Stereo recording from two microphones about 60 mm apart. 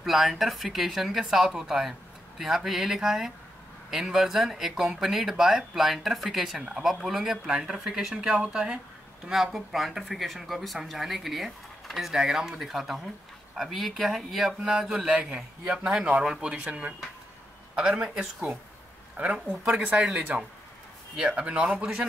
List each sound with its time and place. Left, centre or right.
0.0 s speech: centre
9.3 s speech: centre
15.2 s speech: centre